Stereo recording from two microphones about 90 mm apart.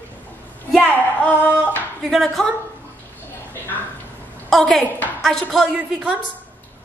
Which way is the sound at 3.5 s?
20° left (ahead or behind).